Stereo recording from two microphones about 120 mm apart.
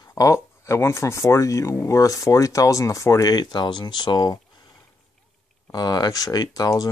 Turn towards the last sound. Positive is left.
turn(degrees=30)  # may be behind; listen again after turning